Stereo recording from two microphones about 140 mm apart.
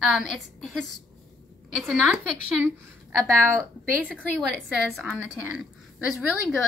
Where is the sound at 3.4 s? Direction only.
20° right (ahead or behind).